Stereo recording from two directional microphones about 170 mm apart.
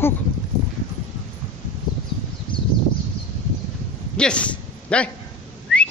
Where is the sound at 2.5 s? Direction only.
30° left (ahead or behind).